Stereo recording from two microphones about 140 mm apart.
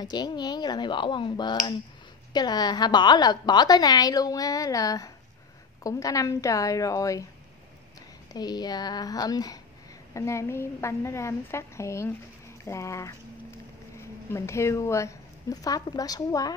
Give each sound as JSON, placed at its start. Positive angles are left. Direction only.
{"t": 0.0, "sound": "a woman's voice", "side_deg": 30}
{"t": 8.3, "sound": "a woman's voice", "side_deg": 30}